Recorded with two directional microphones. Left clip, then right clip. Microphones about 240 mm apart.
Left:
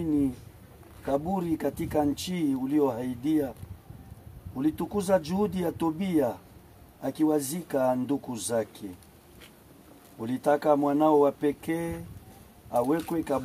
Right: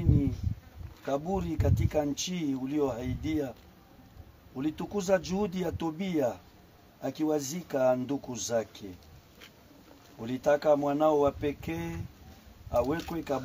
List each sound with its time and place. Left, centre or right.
1.0 s speech: centre
4.6 s speech: centre
10.2 s speech: centre